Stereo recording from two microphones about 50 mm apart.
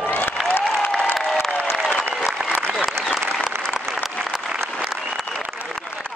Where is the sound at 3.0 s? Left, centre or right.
Right.